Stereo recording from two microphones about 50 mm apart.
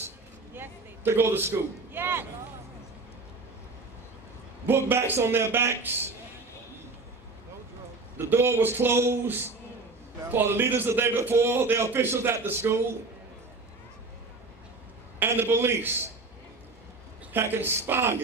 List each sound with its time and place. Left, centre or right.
0.6 s a man's voice: right
4.6 s a man's voice: right
8.2 s a man's voice: right
15.2 s a man's voice: right
17.3 s a man's voice: right